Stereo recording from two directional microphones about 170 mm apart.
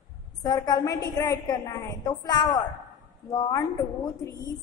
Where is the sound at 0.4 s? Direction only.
20° left (ahead or behind).